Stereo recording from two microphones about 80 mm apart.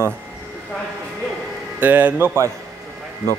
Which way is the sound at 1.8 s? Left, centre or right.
Right.